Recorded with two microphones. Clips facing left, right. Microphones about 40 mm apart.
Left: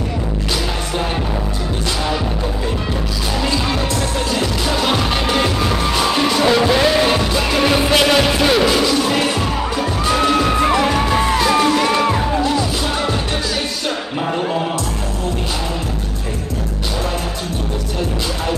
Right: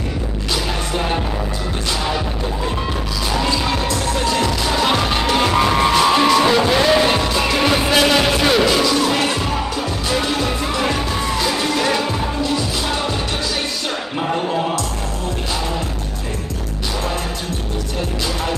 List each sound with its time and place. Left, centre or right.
4.8 s music: centre
11.1 s music: left
13.8 s music: centre